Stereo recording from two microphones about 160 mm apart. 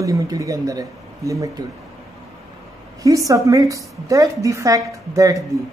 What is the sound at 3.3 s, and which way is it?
Speech, 20° right (ahead or behind).